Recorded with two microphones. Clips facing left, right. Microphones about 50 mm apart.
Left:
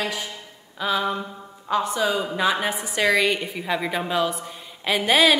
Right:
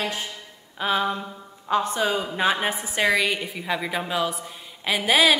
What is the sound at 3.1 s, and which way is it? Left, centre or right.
A woman's voice, centre.